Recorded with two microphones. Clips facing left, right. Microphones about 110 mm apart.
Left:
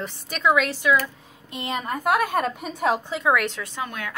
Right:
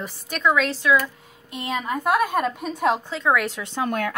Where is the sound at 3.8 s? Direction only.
50° right (ahead or behind).